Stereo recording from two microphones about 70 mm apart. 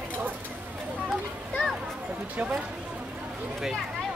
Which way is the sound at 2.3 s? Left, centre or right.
Centre.